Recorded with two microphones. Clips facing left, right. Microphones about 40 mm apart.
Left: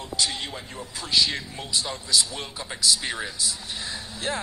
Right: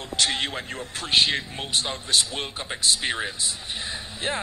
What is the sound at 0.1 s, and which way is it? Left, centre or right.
Speech, right.